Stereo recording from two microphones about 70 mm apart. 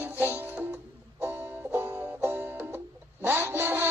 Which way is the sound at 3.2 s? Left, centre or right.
Right.